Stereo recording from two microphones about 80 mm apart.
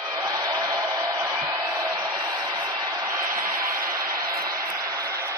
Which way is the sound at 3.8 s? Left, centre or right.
Right.